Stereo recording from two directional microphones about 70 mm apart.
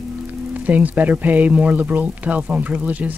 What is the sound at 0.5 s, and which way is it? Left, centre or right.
Speech, right.